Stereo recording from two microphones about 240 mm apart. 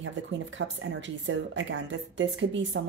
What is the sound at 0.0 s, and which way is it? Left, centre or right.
Speech, right.